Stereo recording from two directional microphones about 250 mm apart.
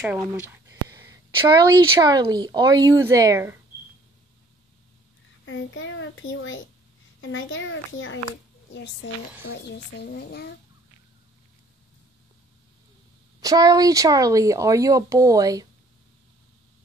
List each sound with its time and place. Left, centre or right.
0.0 s speech: centre
5.4 s a child's voice: left
13.4 s speech: centre